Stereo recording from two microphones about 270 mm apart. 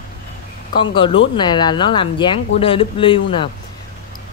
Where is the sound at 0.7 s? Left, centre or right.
Centre.